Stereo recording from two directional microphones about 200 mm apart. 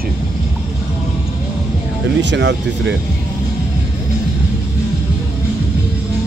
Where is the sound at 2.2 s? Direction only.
60° right (ahead or behind).